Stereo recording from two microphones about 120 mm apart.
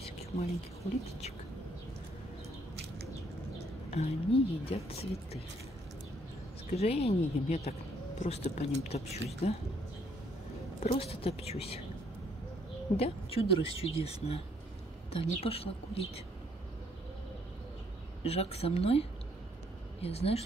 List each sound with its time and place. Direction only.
0.0 s a sound: 60° left (ahead or behind)
3.9 s speech: 55° left (ahead or behind)
6.7 s a woman's voice: 60° left (ahead or behind)
10.8 s speech: 55° left (ahead or behind)
12.9 s a woman's voice: 55° left (ahead or behind)
18.2 s speech: 55° left (ahead or behind)